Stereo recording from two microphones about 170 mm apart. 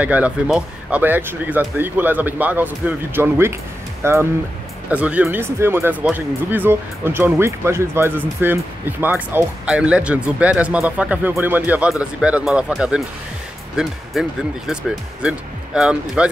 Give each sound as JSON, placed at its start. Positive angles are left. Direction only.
{"t": 0.0, "sound": "speech", "side_deg": -10}